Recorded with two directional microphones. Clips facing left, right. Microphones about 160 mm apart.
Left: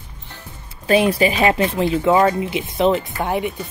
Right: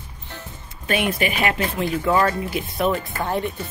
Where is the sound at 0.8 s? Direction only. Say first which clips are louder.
Left 7 dB; 30° left (ahead or behind).